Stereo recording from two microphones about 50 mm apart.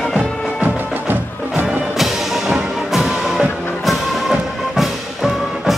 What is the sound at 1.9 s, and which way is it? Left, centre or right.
Music, centre.